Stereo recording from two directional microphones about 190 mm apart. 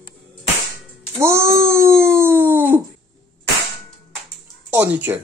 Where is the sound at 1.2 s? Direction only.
15° right (ahead or behind).